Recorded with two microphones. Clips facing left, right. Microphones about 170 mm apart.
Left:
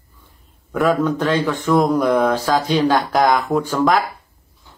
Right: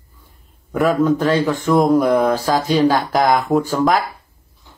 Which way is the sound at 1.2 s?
45° right (ahead or behind).